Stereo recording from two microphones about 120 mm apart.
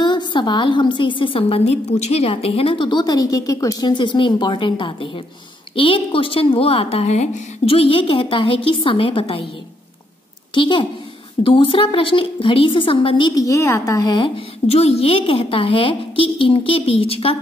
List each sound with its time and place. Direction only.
0.0 s a woman's voice: 40° left (ahead or behind)
10.5 s a woman's voice: 45° left (ahead or behind)
13.3 s a woman's voice: 25° left (ahead or behind)
14.7 s a woman's voice: 60° left (ahead or behind)